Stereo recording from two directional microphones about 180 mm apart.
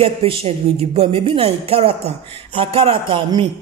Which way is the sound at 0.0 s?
30° right (ahead or behind).